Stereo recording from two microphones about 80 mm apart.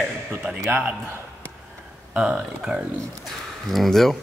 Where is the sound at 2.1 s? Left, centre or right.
Centre.